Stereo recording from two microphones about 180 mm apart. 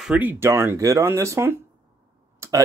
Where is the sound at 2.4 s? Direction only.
15° right (ahead or behind).